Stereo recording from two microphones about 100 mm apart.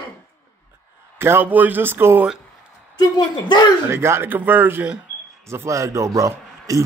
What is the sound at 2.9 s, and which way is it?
Speech, 45° left (ahead or behind).